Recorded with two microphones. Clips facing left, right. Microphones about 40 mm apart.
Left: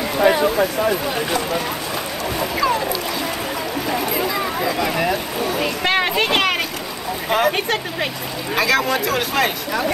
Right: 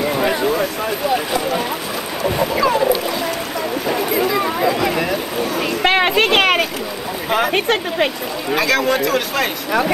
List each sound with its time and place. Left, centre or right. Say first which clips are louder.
0.2 s speech: left 6 dB; centre
3.9 s speech: right 4 dB; centre
5.9 s speech: right 4 dB; right
7.2 s speech: even; centre
7.5 s speech: right 5 dB; right
8.5 s speech: right 1 dB; centre